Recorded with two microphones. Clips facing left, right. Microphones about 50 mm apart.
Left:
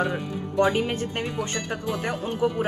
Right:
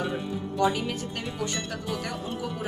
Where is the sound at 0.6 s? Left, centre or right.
Left.